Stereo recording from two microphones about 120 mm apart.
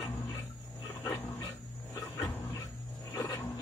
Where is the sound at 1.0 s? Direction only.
25° left (ahead or behind).